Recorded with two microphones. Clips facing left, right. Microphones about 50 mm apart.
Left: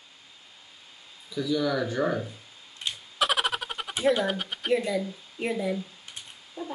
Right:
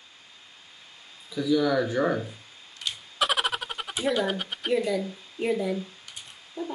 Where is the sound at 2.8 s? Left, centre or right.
Left.